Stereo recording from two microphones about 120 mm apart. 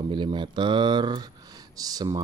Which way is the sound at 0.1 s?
40° right (ahead or behind).